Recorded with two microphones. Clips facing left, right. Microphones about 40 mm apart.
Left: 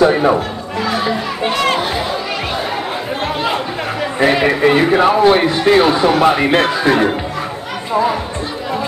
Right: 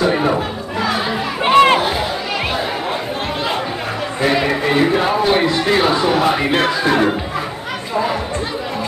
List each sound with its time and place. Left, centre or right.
0.0 s music: centre
1.4 s music: right
4.2 s speech: left
5.6 s speech: centre